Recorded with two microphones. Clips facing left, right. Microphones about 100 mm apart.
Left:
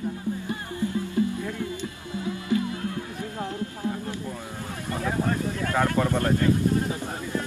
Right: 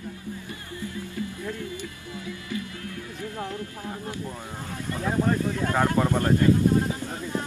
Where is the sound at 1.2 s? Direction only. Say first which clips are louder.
Left 9 dB; 30° left (ahead or behind).